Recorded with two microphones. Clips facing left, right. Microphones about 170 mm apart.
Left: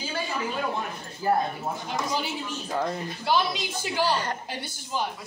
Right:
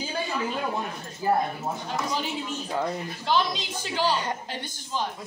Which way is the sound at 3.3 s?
10° left (ahead or behind).